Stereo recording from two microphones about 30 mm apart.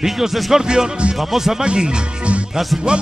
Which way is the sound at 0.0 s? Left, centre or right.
Centre.